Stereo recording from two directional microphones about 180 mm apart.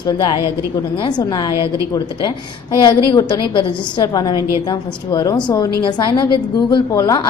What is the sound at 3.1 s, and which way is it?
A woman's voice, 25° left (ahead or behind).